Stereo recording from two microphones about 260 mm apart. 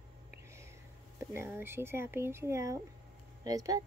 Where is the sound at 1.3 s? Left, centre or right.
Centre.